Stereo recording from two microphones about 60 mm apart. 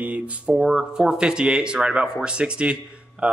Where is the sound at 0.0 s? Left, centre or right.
Right.